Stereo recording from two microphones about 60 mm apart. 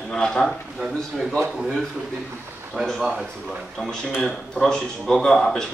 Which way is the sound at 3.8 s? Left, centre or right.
Centre.